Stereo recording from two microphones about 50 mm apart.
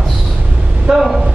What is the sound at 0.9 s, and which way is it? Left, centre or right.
Speech, centre.